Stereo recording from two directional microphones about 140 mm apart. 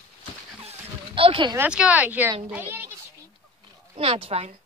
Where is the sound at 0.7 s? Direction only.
40° right (ahead or behind).